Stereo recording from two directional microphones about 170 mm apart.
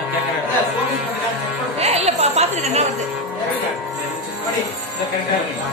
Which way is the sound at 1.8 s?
40° right (ahead or behind).